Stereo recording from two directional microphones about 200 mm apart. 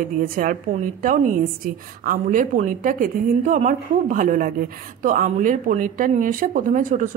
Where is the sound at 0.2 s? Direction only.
45° right (ahead or behind).